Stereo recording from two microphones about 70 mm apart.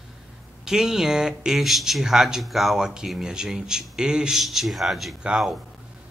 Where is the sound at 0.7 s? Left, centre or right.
Centre.